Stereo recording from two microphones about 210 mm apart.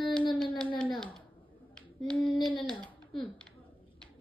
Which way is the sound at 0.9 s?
Centre (ahead or behind).